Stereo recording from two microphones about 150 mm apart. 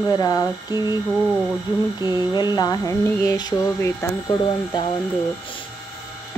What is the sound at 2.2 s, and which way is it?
Mantra, 30° left (ahead or behind).